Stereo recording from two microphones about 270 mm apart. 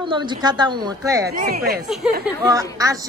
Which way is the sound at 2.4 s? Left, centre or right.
Centre.